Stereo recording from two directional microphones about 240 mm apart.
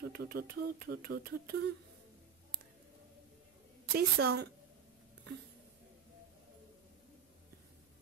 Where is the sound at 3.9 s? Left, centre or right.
Right.